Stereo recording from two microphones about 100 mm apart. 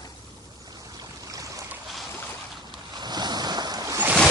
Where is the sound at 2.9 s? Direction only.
45° right (ahead or behind).